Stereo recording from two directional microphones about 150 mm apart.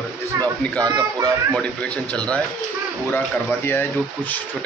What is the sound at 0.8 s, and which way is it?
Speech, 25° right (ahead or behind).